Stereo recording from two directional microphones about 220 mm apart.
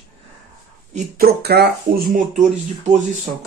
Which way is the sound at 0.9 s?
45° right (ahead or behind).